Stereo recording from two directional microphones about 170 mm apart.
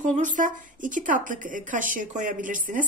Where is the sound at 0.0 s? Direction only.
45° right (ahead or behind).